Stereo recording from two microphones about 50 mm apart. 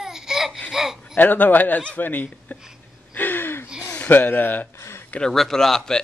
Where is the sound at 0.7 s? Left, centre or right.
Centre.